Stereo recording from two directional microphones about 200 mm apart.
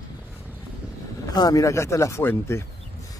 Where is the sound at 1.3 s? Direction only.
20° left (ahead or behind).